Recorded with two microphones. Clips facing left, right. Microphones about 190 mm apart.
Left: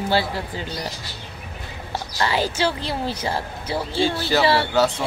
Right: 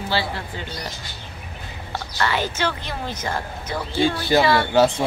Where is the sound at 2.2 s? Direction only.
35° left (ahead or behind).